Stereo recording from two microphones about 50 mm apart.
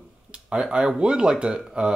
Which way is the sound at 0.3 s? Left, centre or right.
Centre.